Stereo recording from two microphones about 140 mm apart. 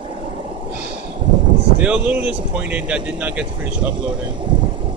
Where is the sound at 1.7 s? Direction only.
10° right (ahead or behind).